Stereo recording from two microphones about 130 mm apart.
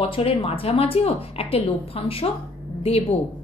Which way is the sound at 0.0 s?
45° left (ahead or behind).